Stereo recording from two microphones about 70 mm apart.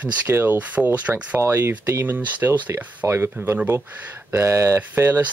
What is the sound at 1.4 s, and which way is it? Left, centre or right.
Speech, right.